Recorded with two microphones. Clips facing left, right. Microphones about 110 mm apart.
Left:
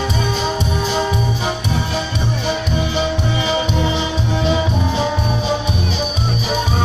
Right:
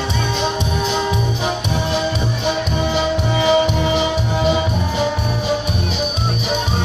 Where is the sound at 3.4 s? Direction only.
15° right (ahead or behind).